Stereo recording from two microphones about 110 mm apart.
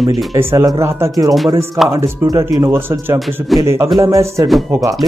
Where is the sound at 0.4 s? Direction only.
25° right (ahead or behind).